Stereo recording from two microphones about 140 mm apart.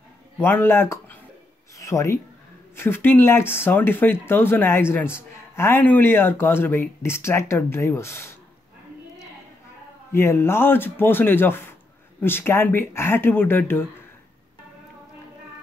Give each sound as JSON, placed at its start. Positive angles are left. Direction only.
{"t": 0.4, "sound": "speech", "side_deg": 15}
{"t": 10.1, "sound": "speech", "side_deg": 20}